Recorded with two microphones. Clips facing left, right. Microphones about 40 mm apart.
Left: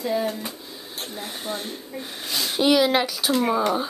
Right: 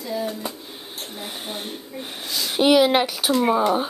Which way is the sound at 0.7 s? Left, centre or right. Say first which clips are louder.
Right 1 dB; right.